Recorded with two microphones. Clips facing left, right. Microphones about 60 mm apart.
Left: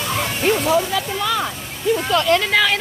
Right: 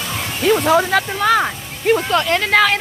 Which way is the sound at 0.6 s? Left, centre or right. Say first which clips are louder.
Right 4 dB; right.